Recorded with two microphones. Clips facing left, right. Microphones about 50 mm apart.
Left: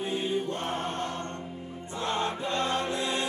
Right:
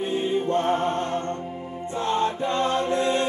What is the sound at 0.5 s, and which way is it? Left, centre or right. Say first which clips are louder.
Chant: right 9 dB; right.